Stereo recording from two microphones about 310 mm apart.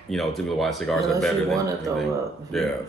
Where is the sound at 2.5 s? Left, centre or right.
Centre.